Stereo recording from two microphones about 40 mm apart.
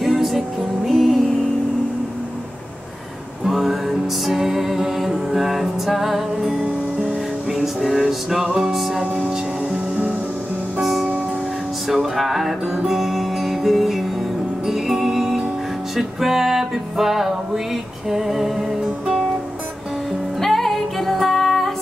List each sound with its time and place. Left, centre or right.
0.0 s music: centre
3.4 s music: centre
6.6 s music: right
7.5 s music: centre
8.7 s music: centre
9.0 s music: right
10.8 s music: centre
20.1 s music: centre